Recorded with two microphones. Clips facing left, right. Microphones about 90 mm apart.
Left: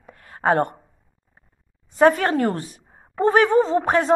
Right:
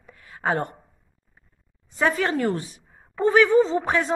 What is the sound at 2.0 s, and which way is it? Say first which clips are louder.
A woman's voice: left 6 dB; 45° left (ahead or behind).